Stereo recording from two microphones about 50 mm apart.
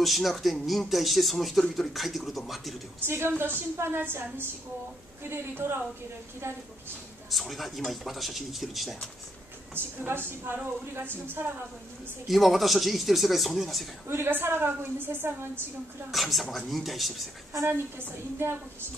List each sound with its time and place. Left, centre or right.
0.0 s speech: centre
3.1 s a woman's voice: right
5.6 s a woman's voice: right
7.2 s speech: centre
9.8 s a woman's voice: right
12.3 s speech: centre
14.0 s a woman's voice: right
16.1 s speech: centre
17.6 s a woman's voice: right